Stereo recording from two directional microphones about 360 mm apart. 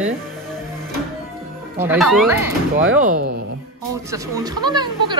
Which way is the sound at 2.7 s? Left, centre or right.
Right.